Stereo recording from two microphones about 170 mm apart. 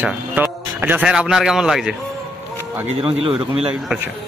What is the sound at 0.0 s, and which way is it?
A man's voice, 10° right (ahead or behind).